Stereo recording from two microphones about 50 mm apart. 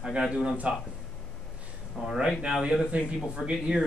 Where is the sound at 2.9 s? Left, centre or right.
Right.